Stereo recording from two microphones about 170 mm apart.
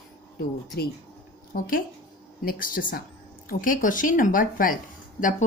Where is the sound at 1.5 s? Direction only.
55° left (ahead or behind).